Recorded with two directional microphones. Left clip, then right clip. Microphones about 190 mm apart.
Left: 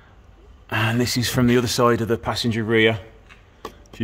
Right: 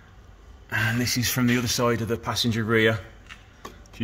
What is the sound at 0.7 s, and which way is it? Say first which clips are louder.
Speech: left 3 dB; 35° left (ahead or behind).